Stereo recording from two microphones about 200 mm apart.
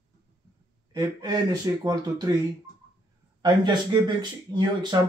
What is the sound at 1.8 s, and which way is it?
Speech, 20° right (ahead or behind).